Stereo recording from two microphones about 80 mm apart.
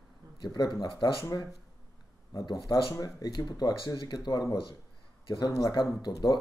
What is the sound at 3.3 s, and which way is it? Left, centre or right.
Speech, left.